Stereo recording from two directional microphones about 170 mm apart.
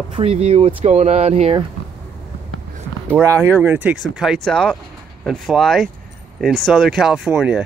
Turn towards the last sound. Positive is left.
turn(degrees=-5)  # may be behind; listen again after turning